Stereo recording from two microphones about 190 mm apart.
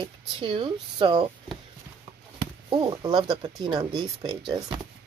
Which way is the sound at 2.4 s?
20° right (ahead or behind).